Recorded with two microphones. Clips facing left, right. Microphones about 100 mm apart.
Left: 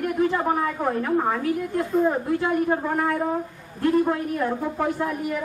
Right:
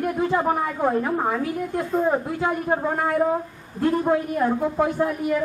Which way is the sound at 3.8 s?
20° right (ahead or behind).